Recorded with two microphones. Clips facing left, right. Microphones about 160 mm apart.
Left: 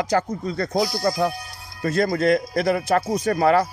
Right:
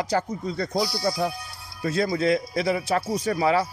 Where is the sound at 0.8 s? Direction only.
50° left (ahead or behind).